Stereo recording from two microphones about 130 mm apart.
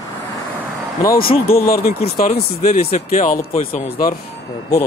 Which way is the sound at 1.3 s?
50° left (ahead or behind).